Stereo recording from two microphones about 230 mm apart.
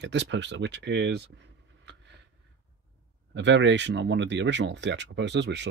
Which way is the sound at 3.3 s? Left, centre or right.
Right.